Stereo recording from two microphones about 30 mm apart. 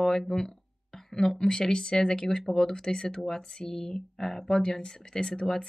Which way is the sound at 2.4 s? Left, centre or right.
Centre.